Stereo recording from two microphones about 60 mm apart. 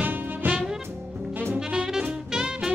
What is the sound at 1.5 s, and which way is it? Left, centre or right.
Saxophone, centre.